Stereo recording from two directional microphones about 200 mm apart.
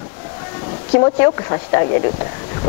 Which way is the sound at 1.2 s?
20° left (ahead or behind).